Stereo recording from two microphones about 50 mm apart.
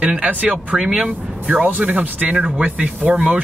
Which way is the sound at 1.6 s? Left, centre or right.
Right.